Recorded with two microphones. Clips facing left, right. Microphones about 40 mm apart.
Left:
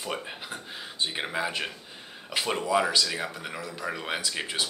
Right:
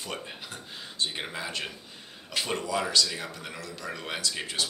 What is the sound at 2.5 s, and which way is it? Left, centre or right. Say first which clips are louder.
Speech: left 4 dB; left.